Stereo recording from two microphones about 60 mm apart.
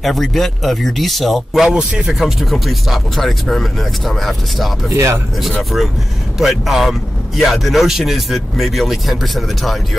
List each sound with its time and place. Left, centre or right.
0.0 s speech: centre
4.8 s speech: right
5.6 s speech: centre